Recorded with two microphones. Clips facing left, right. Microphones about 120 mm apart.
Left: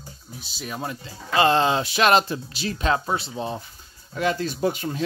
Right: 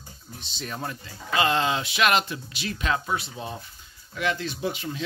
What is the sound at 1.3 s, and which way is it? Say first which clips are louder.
Speech: left 5 dB; 35° left (ahead or behind).